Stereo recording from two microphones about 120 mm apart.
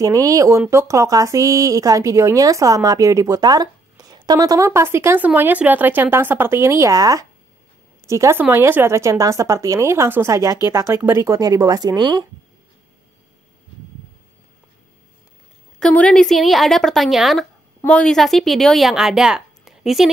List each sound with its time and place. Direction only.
0.0 s speech: 30° right (ahead or behind)
15.8 s a woman's voice: 10° left (ahead or behind)